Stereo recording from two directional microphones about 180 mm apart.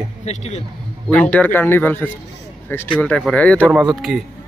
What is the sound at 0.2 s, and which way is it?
Speech, 35° left (ahead or behind).